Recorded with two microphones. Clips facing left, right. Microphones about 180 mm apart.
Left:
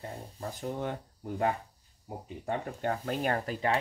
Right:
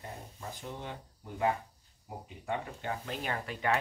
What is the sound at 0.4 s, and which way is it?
Speech, 45° left (ahead or behind).